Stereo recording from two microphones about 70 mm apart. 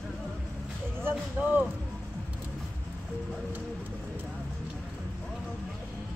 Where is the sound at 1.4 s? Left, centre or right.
Right.